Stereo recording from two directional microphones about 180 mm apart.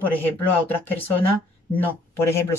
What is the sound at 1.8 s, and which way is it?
Speech, 15° left (ahead or behind).